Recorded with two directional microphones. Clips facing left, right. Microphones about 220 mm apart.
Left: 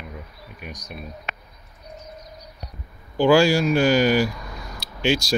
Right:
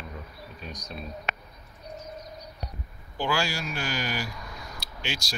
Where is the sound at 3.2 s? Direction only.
75° left (ahead or behind).